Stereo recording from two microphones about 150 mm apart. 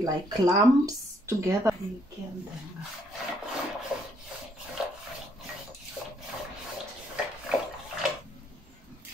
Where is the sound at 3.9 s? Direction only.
5° right (ahead or behind).